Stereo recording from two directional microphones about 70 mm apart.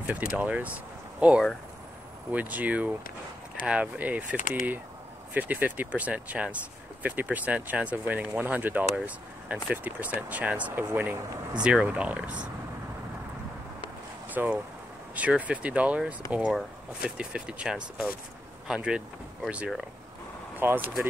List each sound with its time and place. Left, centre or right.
0.0 s speech: right
14.3 s speech: right
20.5 s speech: right